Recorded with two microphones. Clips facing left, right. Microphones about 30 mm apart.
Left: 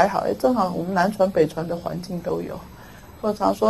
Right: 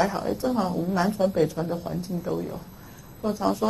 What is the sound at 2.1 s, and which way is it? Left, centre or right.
Speech, centre.